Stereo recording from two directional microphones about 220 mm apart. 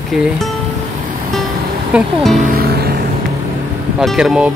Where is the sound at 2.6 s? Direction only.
45° right (ahead or behind).